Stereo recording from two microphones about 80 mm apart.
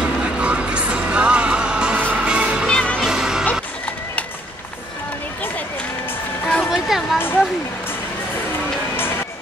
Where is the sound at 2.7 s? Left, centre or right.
Centre.